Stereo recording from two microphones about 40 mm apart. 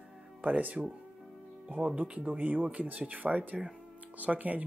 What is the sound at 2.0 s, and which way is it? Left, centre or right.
Speech, right.